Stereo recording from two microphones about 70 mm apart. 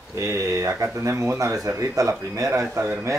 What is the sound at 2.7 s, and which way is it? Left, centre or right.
Speech, right.